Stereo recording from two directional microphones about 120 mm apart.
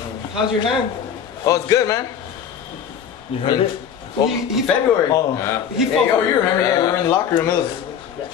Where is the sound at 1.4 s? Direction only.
30° left (ahead or behind).